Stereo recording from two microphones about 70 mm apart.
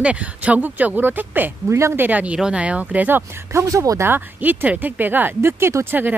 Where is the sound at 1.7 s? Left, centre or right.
Right.